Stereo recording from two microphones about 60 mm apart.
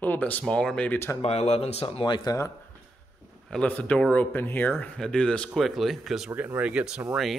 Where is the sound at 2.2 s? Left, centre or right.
Left.